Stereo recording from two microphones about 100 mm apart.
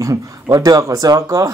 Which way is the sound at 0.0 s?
35° right (ahead or behind).